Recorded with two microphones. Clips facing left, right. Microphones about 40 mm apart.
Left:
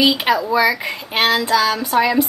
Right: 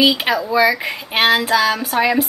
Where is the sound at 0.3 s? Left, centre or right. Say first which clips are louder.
Left 2 dB; centre.